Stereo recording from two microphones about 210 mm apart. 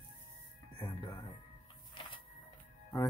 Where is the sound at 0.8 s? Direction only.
20° left (ahead or behind).